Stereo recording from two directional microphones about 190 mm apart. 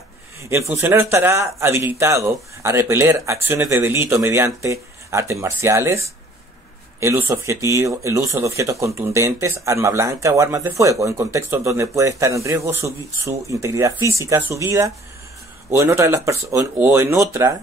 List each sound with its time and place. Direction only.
0.4 s speech: 15° right (ahead or behind)